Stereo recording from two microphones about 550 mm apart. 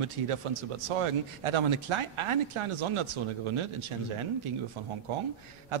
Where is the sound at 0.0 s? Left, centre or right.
Right.